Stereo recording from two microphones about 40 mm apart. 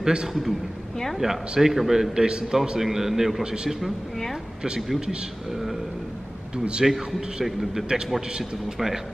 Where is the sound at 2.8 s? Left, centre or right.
Centre.